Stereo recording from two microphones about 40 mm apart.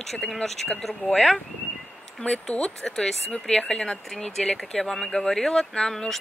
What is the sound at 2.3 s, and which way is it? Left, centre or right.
Speech, left.